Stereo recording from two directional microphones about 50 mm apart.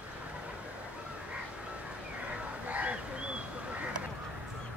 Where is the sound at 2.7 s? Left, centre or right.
Right.